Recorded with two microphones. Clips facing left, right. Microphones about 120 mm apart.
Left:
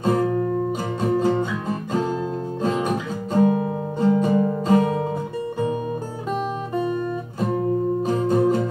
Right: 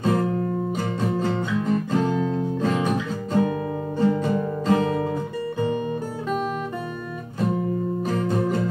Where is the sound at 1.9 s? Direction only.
15° left (ahead or behind).